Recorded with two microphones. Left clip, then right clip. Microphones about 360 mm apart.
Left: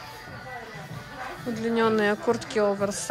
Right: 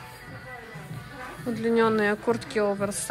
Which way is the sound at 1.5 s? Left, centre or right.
Centre.